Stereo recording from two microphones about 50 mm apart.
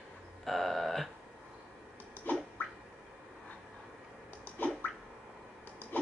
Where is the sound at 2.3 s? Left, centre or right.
Left.